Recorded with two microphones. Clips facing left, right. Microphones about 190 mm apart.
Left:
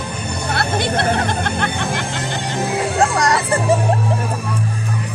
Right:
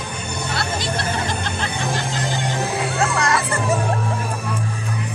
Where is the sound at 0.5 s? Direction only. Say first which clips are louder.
Left 6 dB; 60° left (ahead or behind).